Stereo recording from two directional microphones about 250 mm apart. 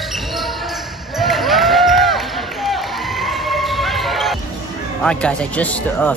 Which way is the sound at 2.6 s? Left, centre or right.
Centre.